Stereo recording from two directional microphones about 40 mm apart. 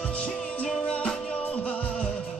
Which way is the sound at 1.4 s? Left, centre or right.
Left.